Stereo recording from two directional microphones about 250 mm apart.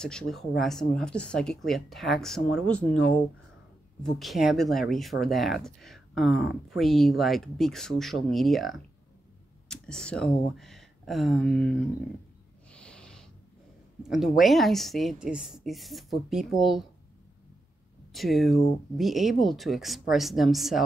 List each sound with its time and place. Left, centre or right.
0.0 s speech: centre
4.0 s speech: centre
12.7 s snort: centre
14.0 s speech: centre
18.1 s speech: centre